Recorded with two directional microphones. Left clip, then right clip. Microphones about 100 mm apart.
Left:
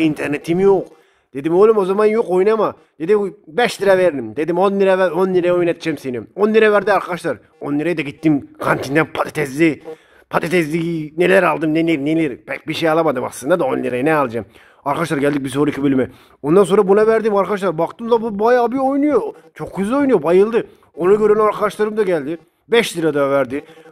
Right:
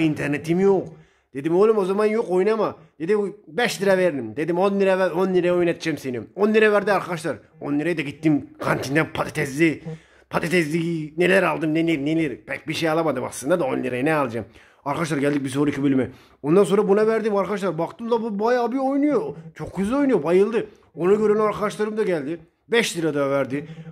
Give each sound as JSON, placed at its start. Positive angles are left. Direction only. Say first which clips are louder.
{"t": 0.0, "sound": "a man's voice", "louder": "left 5 dB", "side_deg": 40}
{"t": 17.0, "sound": "a man's voice", "louder": "left 6 dB", "side_deg": 55}